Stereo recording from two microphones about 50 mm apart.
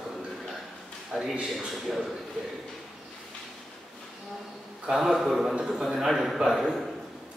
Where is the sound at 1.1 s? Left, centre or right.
Centre.